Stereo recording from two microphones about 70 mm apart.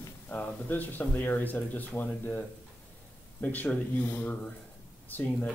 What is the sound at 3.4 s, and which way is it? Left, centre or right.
Speech, left.